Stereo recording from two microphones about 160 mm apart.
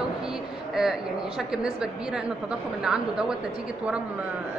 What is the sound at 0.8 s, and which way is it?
A woman's voice, 5° right (ahead or behind).